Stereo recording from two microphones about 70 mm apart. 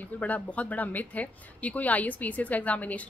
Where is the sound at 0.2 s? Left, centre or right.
Left.